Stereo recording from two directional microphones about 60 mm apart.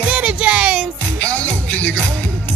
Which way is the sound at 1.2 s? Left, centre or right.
Left.